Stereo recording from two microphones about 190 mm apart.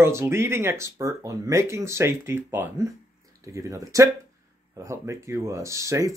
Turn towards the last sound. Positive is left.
turn(degrees=-15)  # may be behind; listen again after turning